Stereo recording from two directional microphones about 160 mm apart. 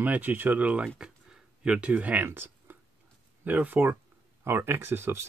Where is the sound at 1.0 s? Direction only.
5° right (ahead or behind).